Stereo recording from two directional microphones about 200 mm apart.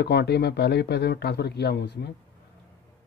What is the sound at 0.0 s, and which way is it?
Speech, 55° left (ahead or behind).